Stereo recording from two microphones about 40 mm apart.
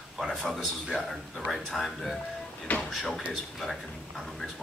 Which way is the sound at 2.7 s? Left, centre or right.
Left.